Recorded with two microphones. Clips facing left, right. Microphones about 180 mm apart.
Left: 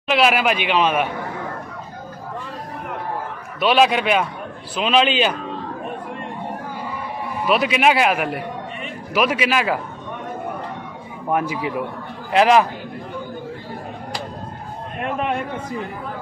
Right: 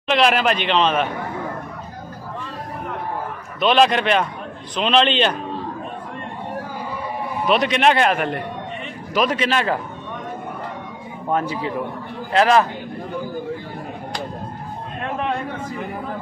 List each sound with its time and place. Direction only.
0.1 s a man's voice: 5° left (ahead or behind)
3.5 s a man's voice: 5° left (ahead or behind)
7.4 s a man's voice: 5° left (ahead or behind)
11.2 s a man's voice: 10° left (ahead or behind)